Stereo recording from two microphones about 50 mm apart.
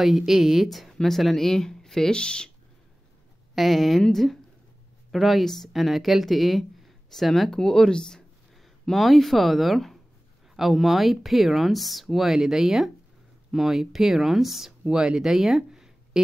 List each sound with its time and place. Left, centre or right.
0.0 s speech: centre
3.5 s speech: centre
8.9 s speech: centre
15.3 s a sound: centre